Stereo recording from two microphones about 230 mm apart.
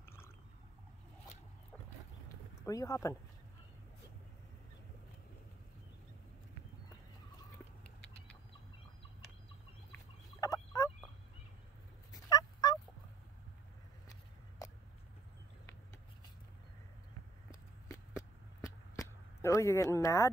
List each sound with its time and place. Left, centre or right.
2.6 s speech: centre
10.4 s gobble: centre
12.1 s fowl: centre
18.6 s a sound: centre